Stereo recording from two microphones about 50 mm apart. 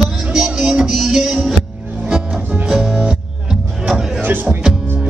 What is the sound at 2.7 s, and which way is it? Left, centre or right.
Music, centre.